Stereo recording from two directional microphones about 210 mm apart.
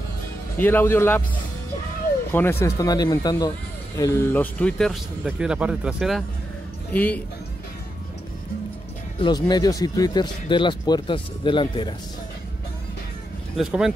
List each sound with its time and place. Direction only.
0.6 s speech: 10° left (ahead or behind)
2.3 s speech: 10° left (ahead or behind)
9.2 s speech: 20° left (ahead or behind)
13.6 s speech: 5° right (ahead or behind)